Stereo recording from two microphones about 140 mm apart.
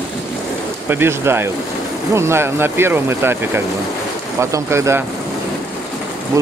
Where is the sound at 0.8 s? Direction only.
15° right (ahead or behind).